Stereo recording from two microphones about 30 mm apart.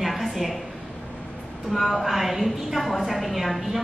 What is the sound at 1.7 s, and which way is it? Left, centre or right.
A woman's voice, centre.